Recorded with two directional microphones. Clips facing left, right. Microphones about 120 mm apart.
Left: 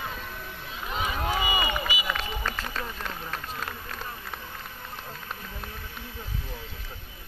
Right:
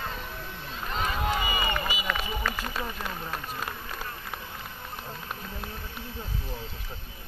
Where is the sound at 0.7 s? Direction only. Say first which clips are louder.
Even; 5° left (ahead or behind).